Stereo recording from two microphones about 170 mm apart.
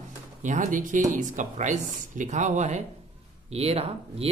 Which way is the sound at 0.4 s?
50° right (ahead or behind).